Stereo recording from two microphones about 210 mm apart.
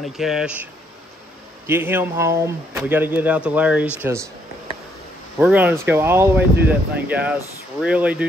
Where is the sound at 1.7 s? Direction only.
10° right (ahead or behind).